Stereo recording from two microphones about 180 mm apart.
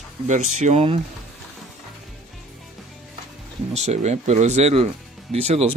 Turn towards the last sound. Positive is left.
turn(degrees=-35)  # may be behind; listen again after turning